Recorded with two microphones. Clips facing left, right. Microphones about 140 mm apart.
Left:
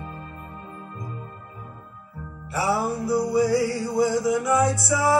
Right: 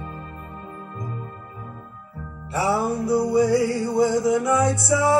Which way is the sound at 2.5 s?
20° right (ahead or behind).